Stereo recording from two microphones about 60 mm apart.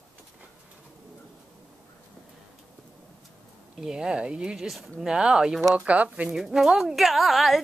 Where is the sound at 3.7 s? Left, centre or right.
Centre.